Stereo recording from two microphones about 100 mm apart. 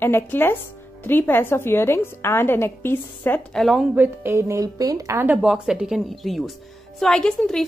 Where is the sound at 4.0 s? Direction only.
25° right (ahead or behind).